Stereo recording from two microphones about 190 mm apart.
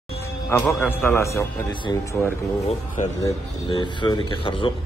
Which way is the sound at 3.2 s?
20° left (ahead or behind).